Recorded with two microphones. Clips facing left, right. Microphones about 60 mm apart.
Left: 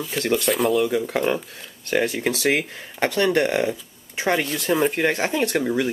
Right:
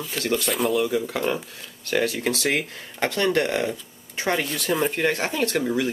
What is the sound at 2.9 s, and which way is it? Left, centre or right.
Speech, centre.